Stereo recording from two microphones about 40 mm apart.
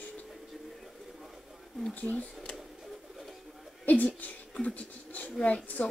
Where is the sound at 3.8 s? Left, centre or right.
Left.